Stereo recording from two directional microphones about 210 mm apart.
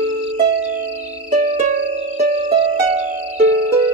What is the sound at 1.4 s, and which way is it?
Music, 35° right (ahead or behind).